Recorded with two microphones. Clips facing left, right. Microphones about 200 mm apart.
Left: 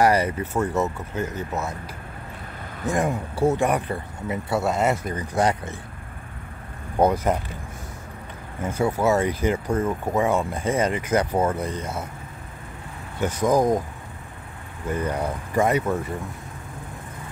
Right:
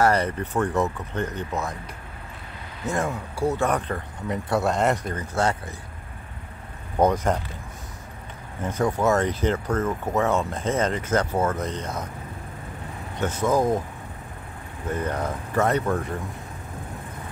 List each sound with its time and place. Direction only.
0.0 s speech: 10° left (ahead or behind)
2.9 s speech: 20° left (ahead or behind)
7.0 s speech: 10° left (ahead or behind)
8.6 s speech: 10° left (ahead or behind)
13.2 s speech: 10° left (ahead or behind)
14.9 s speech: 10° left (ahead or behind)